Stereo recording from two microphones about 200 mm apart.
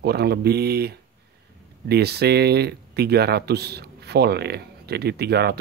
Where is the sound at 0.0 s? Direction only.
55° right (ahead or behind).